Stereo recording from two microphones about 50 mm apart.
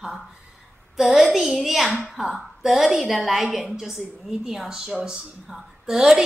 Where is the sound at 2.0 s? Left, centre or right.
Centre.